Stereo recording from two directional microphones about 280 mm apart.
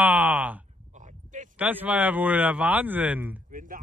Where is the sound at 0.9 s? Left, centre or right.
Right.